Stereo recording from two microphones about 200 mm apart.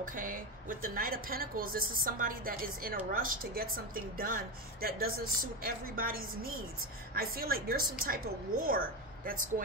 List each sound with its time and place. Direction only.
0.0 s a woman's voice: 45° right (ahead or behind)